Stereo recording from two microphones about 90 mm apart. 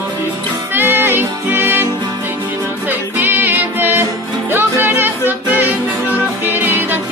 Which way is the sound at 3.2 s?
20° right (ahead or behind).